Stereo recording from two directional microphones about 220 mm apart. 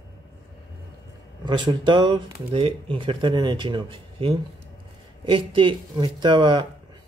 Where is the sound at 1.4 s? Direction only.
20° right (ahead or behind).